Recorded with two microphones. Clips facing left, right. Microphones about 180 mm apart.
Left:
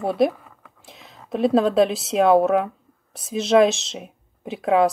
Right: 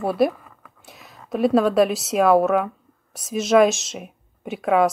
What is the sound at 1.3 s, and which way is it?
Speech, 25° left (ahead or behind).